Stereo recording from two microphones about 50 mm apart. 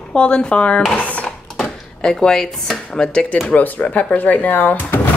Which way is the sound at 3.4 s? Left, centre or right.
Left.